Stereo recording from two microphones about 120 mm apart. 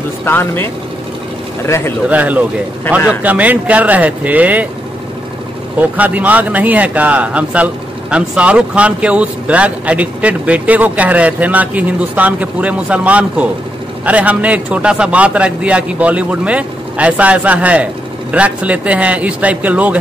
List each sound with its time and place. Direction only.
0.2 s speech: 20° left (ahead or behind)
2.0 s speech: 15° right (ahead or behind)
5.8 s speech: 15° right (ahead or behind)